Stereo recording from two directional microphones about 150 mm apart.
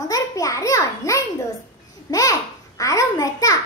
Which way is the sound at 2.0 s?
25° left (ahead or behind).